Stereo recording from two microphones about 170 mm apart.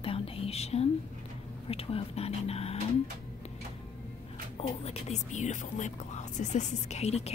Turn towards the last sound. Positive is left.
turn(degrees=40)  # may be behind; listen again after turning